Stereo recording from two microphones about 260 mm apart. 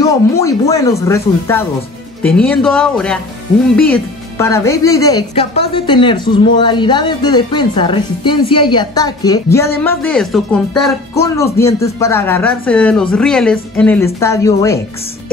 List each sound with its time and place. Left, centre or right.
0.0 s a woman's voice: centre